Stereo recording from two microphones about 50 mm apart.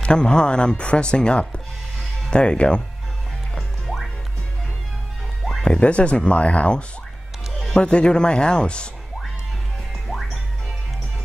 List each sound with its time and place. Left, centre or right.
0.0 s speech: centre
3.5 s music: centre
5.8 s speech: left
7.8 s speech: centre
10.0 s music: centre